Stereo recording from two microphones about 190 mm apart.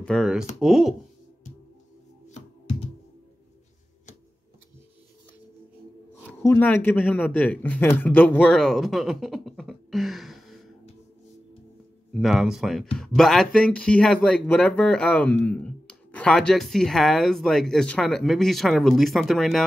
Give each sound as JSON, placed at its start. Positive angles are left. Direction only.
{"t": 0.0, "sound": "speech", "side_deg": 0}
{"t": 6.4, "sound": "speech", "side_deg": 10}
{"t": 12.1, "sound": "speech", "side_deg": 0}